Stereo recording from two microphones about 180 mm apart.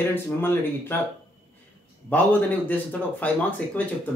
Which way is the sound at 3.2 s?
10° left (ahead or behind).